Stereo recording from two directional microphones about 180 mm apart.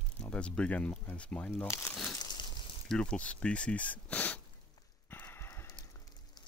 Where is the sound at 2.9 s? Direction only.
5° left (ahead or behind).